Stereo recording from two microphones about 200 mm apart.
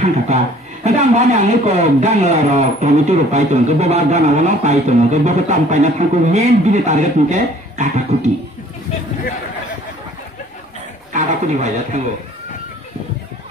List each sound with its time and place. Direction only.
0.8 s speech: 35° right (ahead or behind)
11.1 s speech: 35° right (ahead or behind)